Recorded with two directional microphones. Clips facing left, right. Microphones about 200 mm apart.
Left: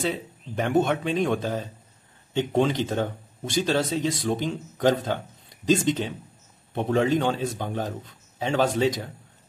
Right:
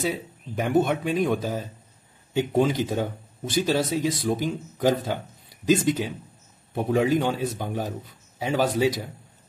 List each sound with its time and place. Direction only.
0.0 s speech: 5° right (ahead or behind)